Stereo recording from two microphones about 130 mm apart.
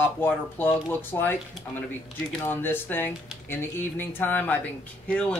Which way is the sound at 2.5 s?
15° left (ahead or behind).